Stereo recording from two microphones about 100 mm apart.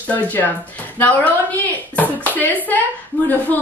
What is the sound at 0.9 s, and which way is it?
A woman's voice, 20° left (ahead or behind).